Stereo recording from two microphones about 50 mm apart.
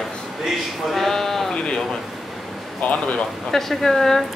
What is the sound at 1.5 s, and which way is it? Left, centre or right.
Speech, centre.